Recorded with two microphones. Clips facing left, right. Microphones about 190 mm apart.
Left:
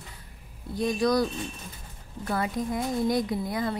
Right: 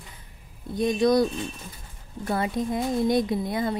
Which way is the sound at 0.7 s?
20° right (ahead or behind).